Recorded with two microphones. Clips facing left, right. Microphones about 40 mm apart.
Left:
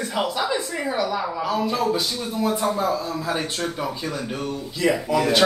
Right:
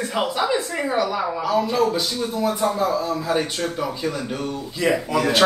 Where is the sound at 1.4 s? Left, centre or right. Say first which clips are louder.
Right 3 dB; centre.